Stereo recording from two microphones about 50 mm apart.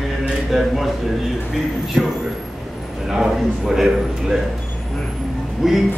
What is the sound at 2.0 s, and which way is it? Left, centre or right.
Speech, centre.